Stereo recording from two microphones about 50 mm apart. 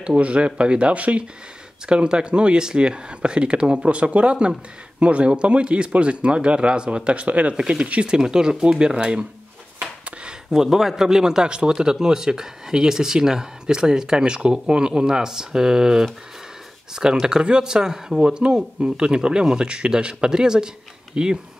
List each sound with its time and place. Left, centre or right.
0.0 s speech: right
7.5 s a man's voice: centre
9.8 s a sound: right
10.5 s a man's voice: centre